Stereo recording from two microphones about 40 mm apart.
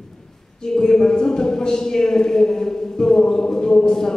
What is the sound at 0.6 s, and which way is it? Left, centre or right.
A man's voice, centre.